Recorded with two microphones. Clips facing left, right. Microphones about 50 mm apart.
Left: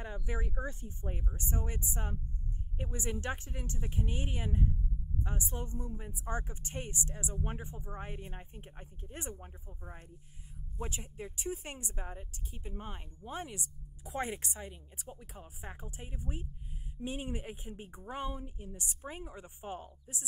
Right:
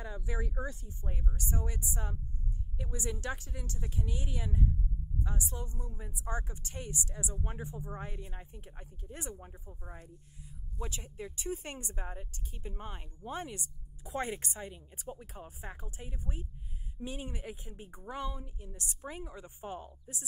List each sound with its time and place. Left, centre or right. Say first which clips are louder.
0.0 s a sound: even; left
0.5 s speech: even; left
9.5 s speech: right 1 dB; centre
10.8 s speech: even; left
11.4 s speech: right 1 dB; right
15.6 s speech: left 2 dB; left